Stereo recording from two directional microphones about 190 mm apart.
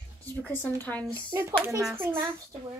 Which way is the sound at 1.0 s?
15° right (ahead or behind).